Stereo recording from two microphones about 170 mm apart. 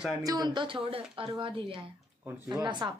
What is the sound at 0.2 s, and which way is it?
A woman's voice, 20° right (ahead or behind).